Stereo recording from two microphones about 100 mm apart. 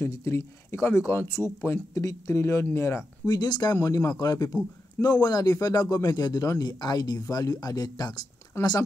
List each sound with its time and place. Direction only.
0.0 s speech: 25° left (ahead or behind)
3.3 s speech: 45° left (ahead or behind)
8.5 s speech: 25° left (ahead or behind)